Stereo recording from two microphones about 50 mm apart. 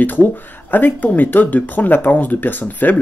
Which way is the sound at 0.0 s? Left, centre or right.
Left.